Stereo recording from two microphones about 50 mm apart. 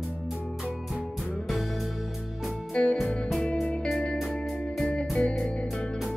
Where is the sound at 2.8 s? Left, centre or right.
Left.